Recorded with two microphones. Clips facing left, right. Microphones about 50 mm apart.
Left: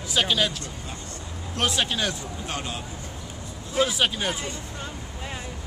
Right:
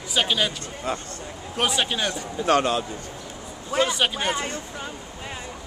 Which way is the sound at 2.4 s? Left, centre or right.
Right.